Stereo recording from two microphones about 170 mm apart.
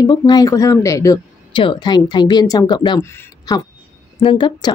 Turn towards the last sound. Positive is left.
turn(degrees=25)  # may be behind; listen again after turning